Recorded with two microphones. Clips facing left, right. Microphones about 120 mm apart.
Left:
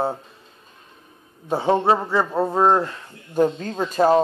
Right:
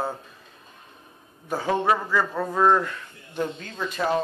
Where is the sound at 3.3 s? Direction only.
45° left (ahead or behind).